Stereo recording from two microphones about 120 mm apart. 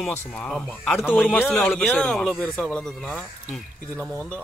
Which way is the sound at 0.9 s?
5° right (ahead or behind).